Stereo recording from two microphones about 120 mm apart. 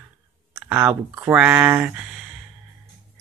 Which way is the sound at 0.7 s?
20° right (ahead or behind).